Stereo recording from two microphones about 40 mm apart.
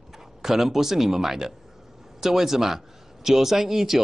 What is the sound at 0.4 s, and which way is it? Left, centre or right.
A man's voice, centre.